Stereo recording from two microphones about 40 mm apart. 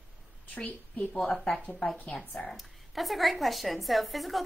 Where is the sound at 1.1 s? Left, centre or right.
Centre.